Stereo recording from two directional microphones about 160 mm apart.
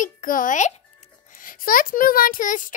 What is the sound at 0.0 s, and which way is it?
A child's voice, 55° left (ahead or behind).